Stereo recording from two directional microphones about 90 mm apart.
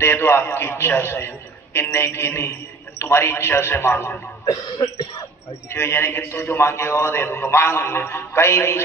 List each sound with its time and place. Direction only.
0.0 s a man's voice: 25° left (ahead or behind)
5.7 s a man's voice: 25° left (ahead or behind)